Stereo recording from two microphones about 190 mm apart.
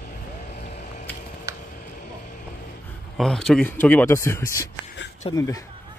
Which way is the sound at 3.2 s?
Centre (ahead or behind).